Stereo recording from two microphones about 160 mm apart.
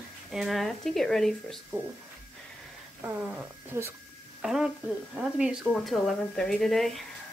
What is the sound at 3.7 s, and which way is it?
Speech, 15° right (ahead or behind).